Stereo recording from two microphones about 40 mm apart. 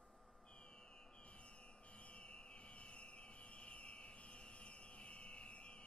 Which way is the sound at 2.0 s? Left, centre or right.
Left.